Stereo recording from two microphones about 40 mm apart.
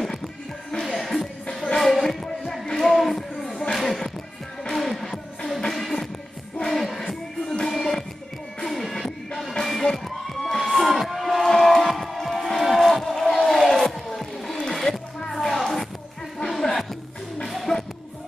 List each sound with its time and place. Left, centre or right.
0.0 s music: centre
2.9 s a sound: centre
4.6 s music: centre
7.4 s music: centre
9.4 s crowd: centre
11.8 s music: centre
13.3 s crowd: centre
14.7 s a sound: centre
15.4 s music: centre
16.4 s a sound: centre
17.7 s music: centre